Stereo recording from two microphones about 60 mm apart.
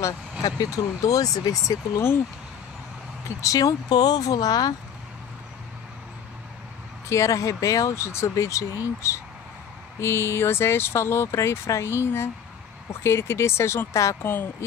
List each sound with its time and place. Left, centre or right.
0.4 s speech: left
3.4 s speech: left
7.1 s speech: left
9.9 s speech: left
14.2 s speech: left